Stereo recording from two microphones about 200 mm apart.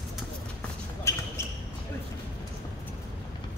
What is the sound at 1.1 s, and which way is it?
Basketball bounce, 15° left (ahead or behind).